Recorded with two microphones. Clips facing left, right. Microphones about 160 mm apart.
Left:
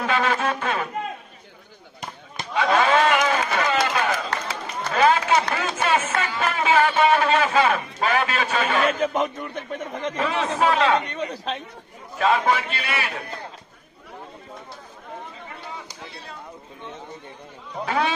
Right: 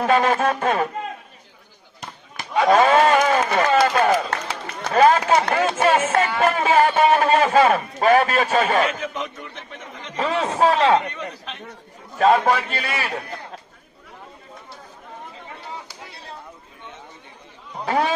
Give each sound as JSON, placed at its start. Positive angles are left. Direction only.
{"t": 0.0, "sound": "speech", "side_deg": -40}
{"t": 2.5, "sound": "a sound", "side_deg": -45}
{"t": 4.9, "sound": "speech", "side_deg": -40}
{"t": 9.0, "sound": "a man's voice", "side_deg": 45}
{"t": 10.1, "sound": "speech", "side_deg": -35}
{"t": 12.2, "sound": "speech", "side_deg": -40}
{"t": 17.8, "sound": "speech", "side_deg": -35}